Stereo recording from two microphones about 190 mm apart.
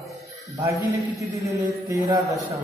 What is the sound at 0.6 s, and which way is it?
A man's voice, 15° right (ahead or behind).